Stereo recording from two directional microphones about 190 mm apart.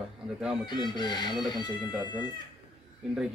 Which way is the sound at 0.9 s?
25° left (ahead or behind).